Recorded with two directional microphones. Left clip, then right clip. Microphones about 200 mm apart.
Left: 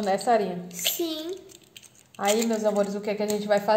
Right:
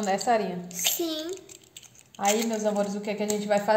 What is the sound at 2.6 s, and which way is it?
A woman's voice, 20° left (ahead or behind).